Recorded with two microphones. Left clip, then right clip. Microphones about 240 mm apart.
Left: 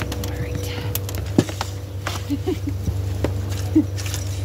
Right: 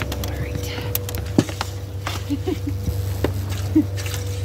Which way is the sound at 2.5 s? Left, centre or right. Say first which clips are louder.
Left 1 dB; centre.